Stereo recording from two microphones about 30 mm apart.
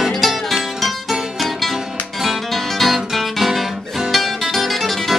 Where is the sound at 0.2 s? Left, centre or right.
Centre.